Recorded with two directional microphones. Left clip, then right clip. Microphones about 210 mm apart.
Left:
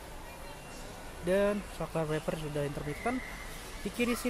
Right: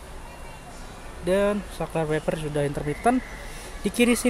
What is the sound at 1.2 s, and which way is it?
Speech, centre (ahead or behind).